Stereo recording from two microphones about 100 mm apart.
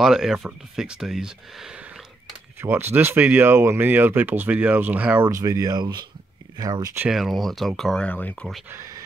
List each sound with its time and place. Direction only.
0.0 s speech: 5° right (ahead or behind)
2.6 s speech: 20° right (ahead or behind)
5.3 s speech: 35° right (ahead or behind)
7.1 s speech: centre (ahead or behind); by 8.5 s 15° left (ahead or behind)
8.6 s speech: 30° right (ahead or behind)